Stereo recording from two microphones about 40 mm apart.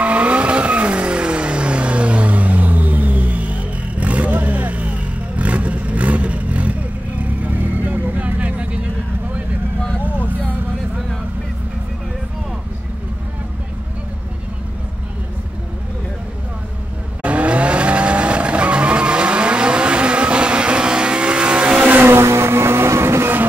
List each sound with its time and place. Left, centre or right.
0.0 s vehicle: right
17.2 s vehicle: right
21.7 s vehicle: right
22.0 s vehicle: right